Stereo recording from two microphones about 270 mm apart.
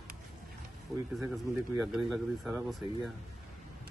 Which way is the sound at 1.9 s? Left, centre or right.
Centre.